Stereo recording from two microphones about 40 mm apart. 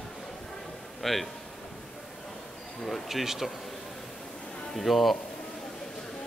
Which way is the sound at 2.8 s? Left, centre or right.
Centre.